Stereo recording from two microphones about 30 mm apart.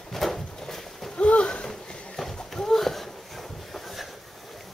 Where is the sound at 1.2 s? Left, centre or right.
Left.